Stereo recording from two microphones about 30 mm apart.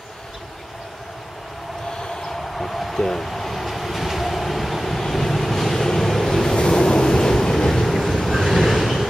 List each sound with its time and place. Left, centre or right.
2.5 s a sound: centre
3.3 s train: centre
6.5 s vehicle: left; by 7.9 s centre
7.9 s vehicle: centre